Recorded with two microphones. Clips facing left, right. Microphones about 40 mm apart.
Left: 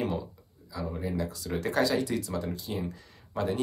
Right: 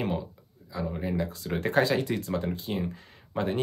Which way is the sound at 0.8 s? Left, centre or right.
Right.